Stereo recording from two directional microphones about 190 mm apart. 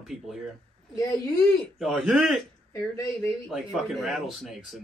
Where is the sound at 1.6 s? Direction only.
Centre (ahead or behind).